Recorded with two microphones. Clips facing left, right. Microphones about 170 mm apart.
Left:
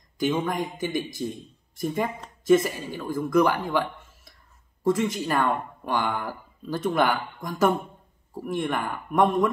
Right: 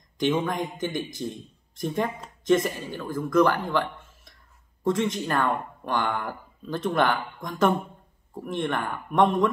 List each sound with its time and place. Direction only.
0.2 s a man's voice: 5° left (ahead or behind)